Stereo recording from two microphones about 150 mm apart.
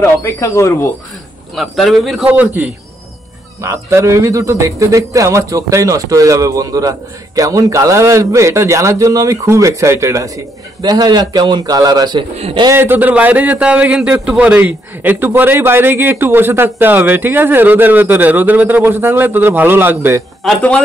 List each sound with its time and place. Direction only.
0.0 s speech: 15° left (ahead or behind)
1.5 s a man's voice: centre (ahead or behind); by 12.3 s 30° right (ahead or behind)
12.4 s speech: 40° right (ahead or behind)
12.6 s a man's voice: 15° right (ahead or behind)
20.4 s speech: 10° left (ahead or behind)